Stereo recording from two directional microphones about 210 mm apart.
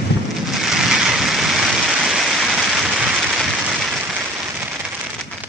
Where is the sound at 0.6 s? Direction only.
Centre (ahead or behind).